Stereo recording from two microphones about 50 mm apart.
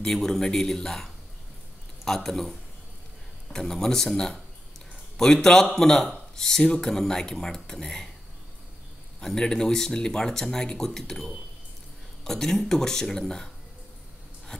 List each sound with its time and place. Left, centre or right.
0.0 s speech: centre
9.2 s speech: centre
14.5 s a sound: centre